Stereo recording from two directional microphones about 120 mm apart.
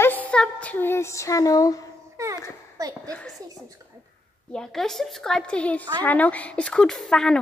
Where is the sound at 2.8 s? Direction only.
30° right (ahead or behind).